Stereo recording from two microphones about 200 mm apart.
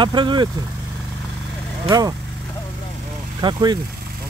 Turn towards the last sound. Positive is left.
turn(degrees=-20)  # may be behind; listen again after turning